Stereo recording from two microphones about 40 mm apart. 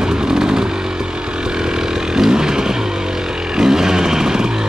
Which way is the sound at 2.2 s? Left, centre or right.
Centre.